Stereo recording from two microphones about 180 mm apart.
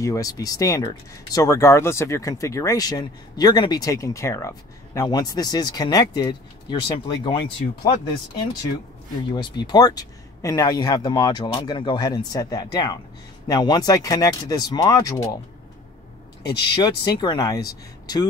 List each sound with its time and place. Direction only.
0.0 s speech: 20° left (ahead or behind)
16.7 s speech: 25° left (ahead or behind)